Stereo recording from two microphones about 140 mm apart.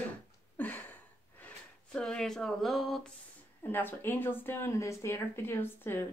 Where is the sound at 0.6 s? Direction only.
10° left (ahead or behind).